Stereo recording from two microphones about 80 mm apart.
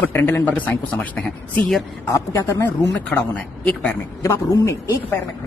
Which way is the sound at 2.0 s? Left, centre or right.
Left.